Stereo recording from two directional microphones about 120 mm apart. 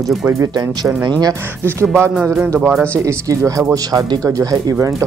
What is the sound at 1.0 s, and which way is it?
Speech, 35° right (ahead or behind).